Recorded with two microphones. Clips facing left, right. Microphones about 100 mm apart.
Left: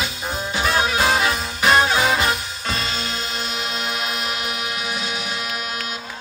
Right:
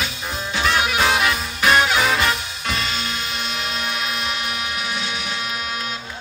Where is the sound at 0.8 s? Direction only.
30° left (ahead or behind).